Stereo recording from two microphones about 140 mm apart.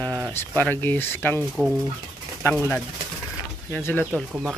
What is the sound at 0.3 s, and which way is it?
Speech, 15° left (ahead or behind).